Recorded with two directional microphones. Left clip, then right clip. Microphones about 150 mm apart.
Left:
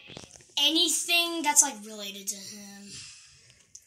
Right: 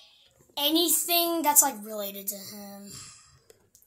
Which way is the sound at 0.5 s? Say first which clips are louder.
Left 1 dB; 15° right (ahead or behind).